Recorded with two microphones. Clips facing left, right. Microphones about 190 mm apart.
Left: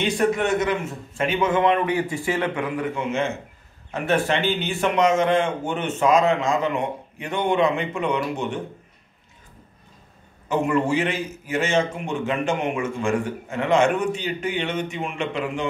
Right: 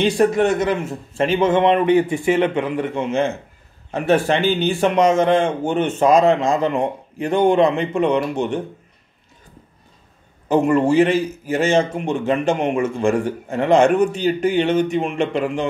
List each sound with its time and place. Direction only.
0.0 s a man's voice: 35° right (ahead or behind)
10.5 s a man's voice: 35° right (ahead or behind)